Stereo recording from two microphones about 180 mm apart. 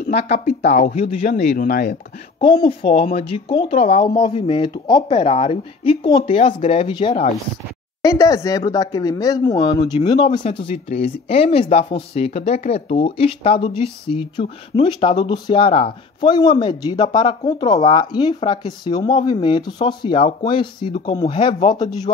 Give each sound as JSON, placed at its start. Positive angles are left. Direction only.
{"t": 0.0, "sound": "speech", "side_deg": 35}
{"t": 3.0, "sound": "speech", "side_deg": 35}
{"t": 8.0, "sound": "speech", "side_deg": 20}
{"t": 21.7, "sound": "speech", "side_deg": 20}